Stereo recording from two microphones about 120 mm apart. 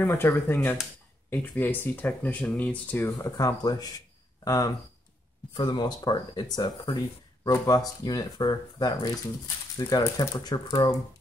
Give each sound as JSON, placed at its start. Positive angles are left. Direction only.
{"t": 0.0, "sound": "speech", "side_deg": 20}
{"t": 3.3, "sound": "speech", "side_deg": 30}